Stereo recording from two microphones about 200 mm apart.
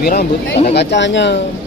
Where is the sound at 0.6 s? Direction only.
55° left (ahead or behind).